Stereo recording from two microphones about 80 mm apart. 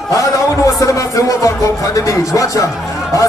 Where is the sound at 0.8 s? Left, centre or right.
Left.